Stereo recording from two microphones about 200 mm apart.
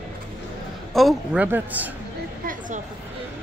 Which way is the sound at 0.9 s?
5° right (ahead or behind).